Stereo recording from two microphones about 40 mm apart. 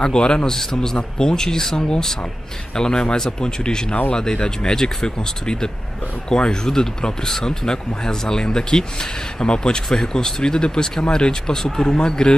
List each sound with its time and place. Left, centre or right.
0.0 s speech: centre